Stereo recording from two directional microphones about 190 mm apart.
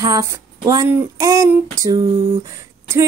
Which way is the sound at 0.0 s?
15° right (ahead or behind).